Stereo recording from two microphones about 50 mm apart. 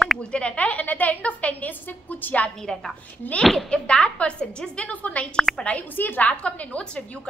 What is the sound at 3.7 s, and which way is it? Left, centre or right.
A woman's voice, centre.